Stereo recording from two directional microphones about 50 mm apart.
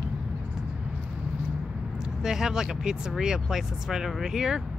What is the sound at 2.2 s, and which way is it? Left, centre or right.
Speech, centre.